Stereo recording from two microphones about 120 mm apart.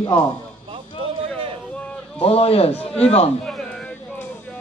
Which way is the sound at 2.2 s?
55° left (ahead or behind).